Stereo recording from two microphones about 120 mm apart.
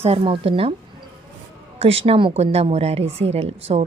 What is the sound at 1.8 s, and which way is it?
A woman's voice, 55° right (ahead or behind).